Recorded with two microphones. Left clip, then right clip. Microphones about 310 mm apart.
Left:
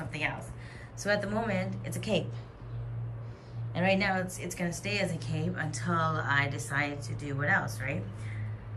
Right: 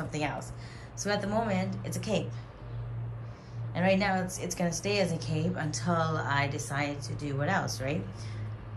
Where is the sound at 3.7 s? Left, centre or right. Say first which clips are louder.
Right 1 dB; centre.